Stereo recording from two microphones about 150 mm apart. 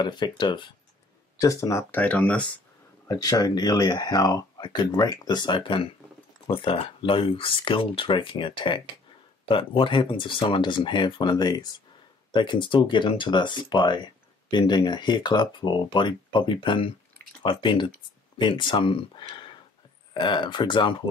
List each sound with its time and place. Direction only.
0.0 s speech: 30° left (ahead or behind); by 2.5 s 10° left (ahead or behind)
3.1 s speech: 25° left (ahead or behind)